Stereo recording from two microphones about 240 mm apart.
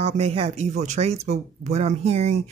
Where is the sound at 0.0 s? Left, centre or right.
Right.